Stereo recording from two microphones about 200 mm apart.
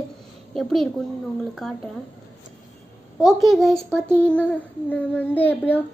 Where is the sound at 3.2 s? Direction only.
Centre (ahead or behind).